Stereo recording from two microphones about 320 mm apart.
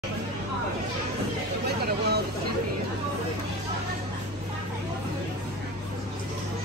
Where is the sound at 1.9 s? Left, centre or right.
Right.